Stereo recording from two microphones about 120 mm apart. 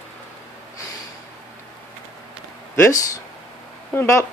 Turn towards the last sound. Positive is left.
turn(degrees=20)  # may be behind; listen again after turning